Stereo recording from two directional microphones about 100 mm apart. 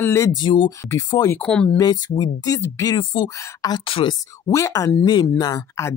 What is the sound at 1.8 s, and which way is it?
Speech, 45° left (ahead or behind).